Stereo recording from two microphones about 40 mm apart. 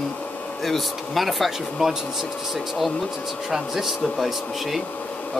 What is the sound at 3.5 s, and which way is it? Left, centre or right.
Speech, centre.